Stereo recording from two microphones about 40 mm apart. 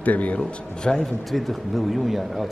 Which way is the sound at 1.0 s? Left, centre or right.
Centre.